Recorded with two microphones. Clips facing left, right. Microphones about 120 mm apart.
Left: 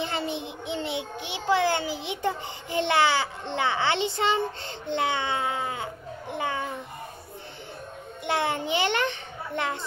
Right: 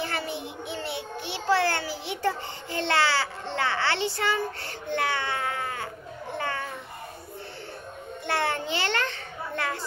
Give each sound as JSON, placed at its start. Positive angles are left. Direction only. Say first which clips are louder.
{"t": 0.0, "sound": "child singing", "louder": "left 2 dB", "side_deg": 20}
{"t": 6.3, "sound": "cat", "louder": "left 2 dB", "side_deg": 15}
{"t": 8.3, "sound": "a child's voice", "louder": "left 1 dB", "side_deg": 15}